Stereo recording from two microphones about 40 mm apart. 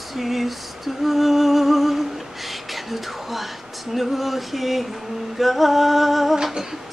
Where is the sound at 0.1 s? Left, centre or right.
Centre.